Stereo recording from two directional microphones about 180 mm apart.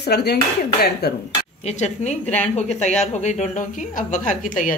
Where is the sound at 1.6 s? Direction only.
40° left (ahead or behind).